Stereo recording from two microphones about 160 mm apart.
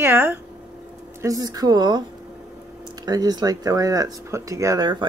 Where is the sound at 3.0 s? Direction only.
25° right (ahead or behind).